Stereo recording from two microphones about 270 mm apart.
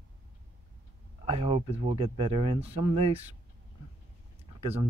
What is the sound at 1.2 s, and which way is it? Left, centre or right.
Speech, centre.